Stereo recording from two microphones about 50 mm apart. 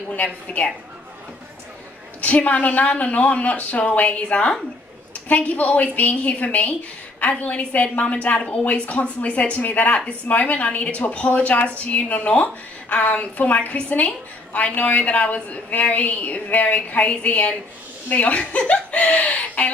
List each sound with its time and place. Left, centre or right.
0.1 s a woman's voice: left
2.2 s a woman's voice: left